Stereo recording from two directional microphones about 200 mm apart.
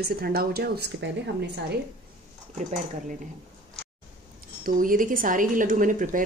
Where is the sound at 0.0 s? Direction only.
50° right (ahead or behind).